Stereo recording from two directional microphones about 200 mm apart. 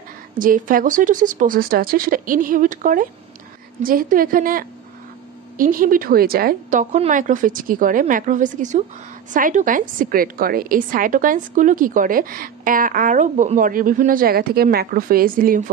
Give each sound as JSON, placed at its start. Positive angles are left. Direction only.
{"t": 0.4, "sound": "a woman's voice", "side_deg": -45}